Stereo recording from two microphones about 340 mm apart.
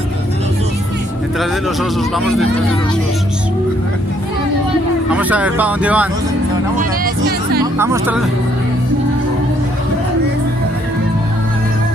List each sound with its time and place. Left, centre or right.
1.4 s speech: centre
5.1 s speech: centre
6.8 s music: right
7.6 s speech: centre